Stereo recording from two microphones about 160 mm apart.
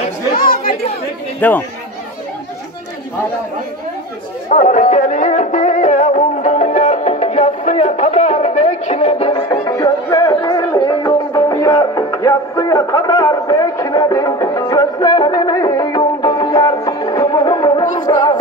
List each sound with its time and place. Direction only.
0.3 s chatter: 65° left (ahead or behind)
1.4 s speech: 10° left (ahead or behind)
4.5 s music: 50° left (ahead or behind)
9.3 s music: 25° left (ahead or behind)
18.0 s a sound: 25° left (ahead or behind)